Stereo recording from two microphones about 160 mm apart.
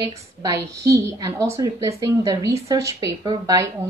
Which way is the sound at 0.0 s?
20° right (ahead or behind).